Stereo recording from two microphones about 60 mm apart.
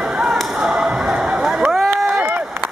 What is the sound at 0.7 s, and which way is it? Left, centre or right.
Whip, centre.